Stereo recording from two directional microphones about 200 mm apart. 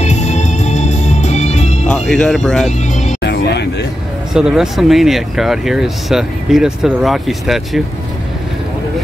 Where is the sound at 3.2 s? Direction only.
55° left (ahead or behind).